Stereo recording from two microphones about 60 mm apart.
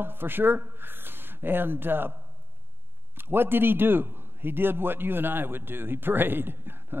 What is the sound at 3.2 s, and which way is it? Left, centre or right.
A man's voice, right.